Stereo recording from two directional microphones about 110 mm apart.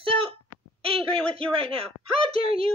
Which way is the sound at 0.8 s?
60° right (ahead or behind).